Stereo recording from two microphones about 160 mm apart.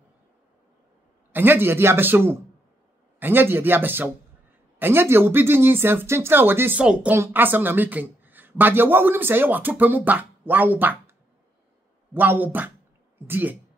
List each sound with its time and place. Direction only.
1.3 s a woman's voice: 15° right (ahead or behind)